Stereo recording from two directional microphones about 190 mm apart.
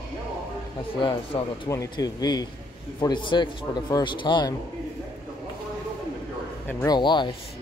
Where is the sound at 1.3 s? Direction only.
20° left (ahead or behind).